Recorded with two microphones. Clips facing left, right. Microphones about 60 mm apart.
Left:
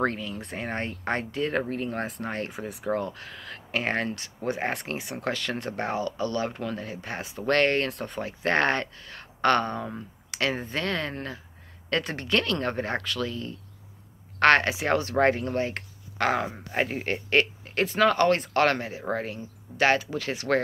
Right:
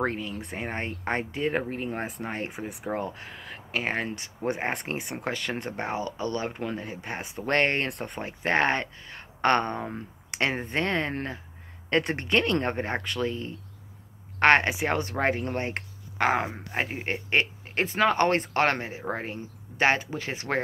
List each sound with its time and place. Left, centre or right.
0.0 s speech: centre
4.1 s speech: right
15.4 s speech: right
16.7 s speech: centre
17.0 s speech: right